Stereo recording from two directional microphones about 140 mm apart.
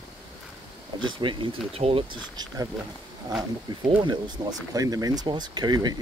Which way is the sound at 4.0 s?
30° right (ahead or behind).